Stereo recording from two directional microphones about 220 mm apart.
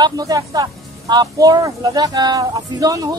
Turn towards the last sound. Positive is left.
turn(degrees=-15)  # may be behind; listen again after turning